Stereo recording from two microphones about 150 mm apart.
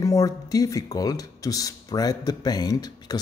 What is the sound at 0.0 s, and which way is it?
Speech, 20° left (ahead or behind).